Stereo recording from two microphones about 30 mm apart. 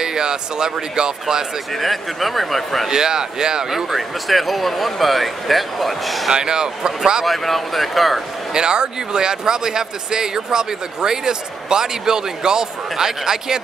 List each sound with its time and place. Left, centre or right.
0.0 s speech: right
1.7 s speech: centre
2.9 s speech: right
4.3 s speech: centre
6.3 s speech: right
7.2 s speech: centre
8.5 s speech: right